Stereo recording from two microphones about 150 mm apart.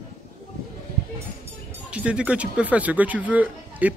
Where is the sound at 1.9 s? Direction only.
5° right (ahead or behind).